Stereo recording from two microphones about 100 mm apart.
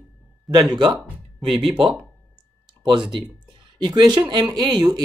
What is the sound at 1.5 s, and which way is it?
Speech, 60° right (ahead or behind).